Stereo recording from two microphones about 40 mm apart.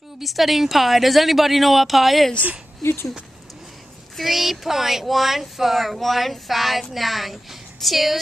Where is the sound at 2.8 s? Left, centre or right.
Left.